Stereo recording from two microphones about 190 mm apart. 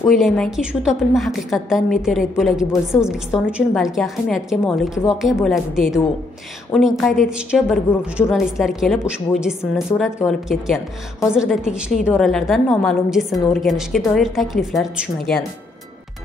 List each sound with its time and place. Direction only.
0.2 s a woman's voice: centre (ahead or behind)